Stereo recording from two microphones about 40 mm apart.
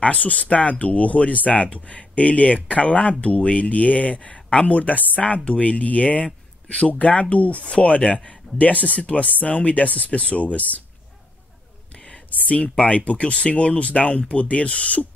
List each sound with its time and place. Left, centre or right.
0.0 s speech: left
8.5 s speech: left
12.4 s speech: left